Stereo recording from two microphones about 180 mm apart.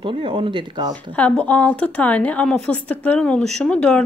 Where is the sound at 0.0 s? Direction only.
30° right (ahead or behind).